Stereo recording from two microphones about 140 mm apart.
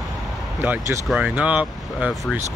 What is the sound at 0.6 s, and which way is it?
Speech, 20° right (ahead or behind).